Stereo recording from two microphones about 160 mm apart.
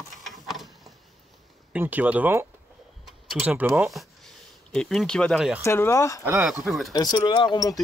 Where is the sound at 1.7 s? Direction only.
10° right (ahead or behind).